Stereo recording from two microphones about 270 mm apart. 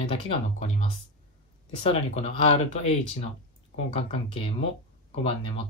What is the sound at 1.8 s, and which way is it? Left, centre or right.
Speech, centre.